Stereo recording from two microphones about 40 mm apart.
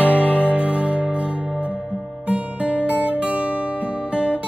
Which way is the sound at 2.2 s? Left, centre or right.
Right.